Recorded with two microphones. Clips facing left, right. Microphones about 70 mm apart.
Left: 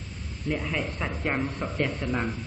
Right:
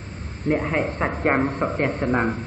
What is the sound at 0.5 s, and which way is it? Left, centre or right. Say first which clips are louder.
A woman's voice: right 8 dB; right.